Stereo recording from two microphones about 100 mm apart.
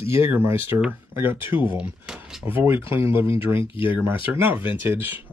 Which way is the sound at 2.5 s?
25° right (ahead or behind).